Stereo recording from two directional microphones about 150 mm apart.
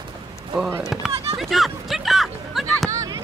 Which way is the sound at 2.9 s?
25° right (ahead or behind).